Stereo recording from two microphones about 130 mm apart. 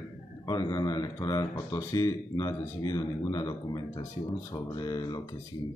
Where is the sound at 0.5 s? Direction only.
30° left (ahead or behind).